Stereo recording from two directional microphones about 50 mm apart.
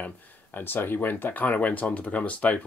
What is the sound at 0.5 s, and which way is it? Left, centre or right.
Speech, left.